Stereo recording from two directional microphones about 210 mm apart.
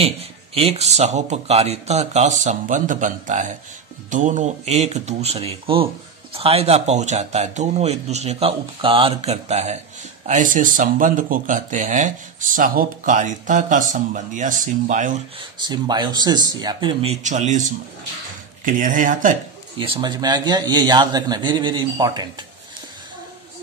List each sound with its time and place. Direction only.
0.0 s speech: 30° right (ahead or behind)
15.6 s a man's voice: 20° right (ahead or behind); by 19.3 s 40° right (ahead or behind)
19.8 s a man's voice: 25° right (ahead or behind)